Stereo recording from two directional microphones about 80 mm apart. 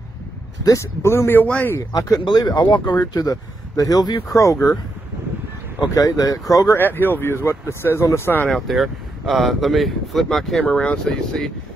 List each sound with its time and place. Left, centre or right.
0.7 s speech: left
2.0 s speech: left
5.9 s speech: left
6.8 s speech: left
8.5 s speech: centre
10.6 s speech: centre